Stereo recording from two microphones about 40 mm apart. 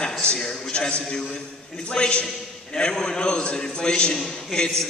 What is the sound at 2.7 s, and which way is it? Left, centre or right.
A man's voice, centre.